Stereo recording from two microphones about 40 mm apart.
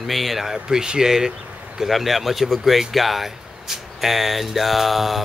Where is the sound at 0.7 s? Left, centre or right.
Centre.